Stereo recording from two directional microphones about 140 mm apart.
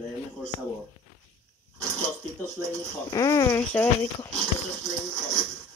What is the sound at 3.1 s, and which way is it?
Speech, 25° left (ahead or behind).